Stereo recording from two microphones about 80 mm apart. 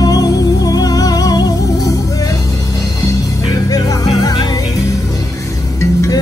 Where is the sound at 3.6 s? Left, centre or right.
Left.